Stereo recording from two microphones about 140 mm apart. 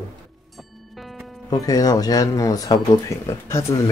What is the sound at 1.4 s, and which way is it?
Speech, 25° left (ahead or behind).